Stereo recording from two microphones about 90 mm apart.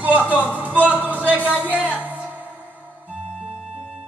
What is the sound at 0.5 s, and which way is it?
Speech, 20° right (ahead or behind).